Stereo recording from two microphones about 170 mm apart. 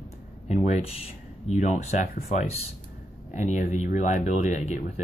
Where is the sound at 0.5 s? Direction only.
40° left (ahead or behind).